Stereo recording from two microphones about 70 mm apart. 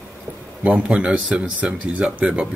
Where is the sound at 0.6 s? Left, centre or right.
Centre.